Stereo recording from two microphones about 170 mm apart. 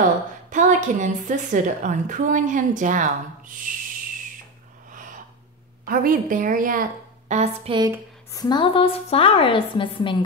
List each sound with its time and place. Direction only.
0.5 s a woman's voice: 45° right (ahead or behind)
3.7 s whistle: 50° right (ahead or behind)
5.9 s a woman's voice: 55° right (ahead or behind)
7.7 s speech: 20° right (ahead or behind)
8.3 s a woman's voice: 25° left (ahead or behind)